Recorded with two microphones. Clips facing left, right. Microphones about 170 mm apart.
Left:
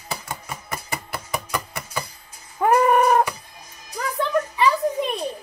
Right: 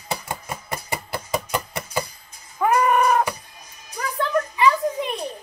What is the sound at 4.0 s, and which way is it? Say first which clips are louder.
Music: even; 30° left (ahead or behind).